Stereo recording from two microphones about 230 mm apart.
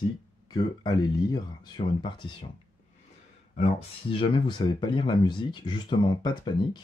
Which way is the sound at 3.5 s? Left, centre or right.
Left.